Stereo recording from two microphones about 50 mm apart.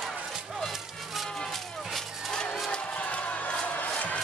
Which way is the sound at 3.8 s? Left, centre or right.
Left.